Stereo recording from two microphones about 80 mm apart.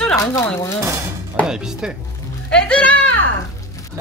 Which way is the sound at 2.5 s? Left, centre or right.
Centre.